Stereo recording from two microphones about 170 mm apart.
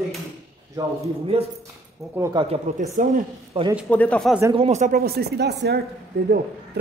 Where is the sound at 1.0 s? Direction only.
35° right (ahead or behind).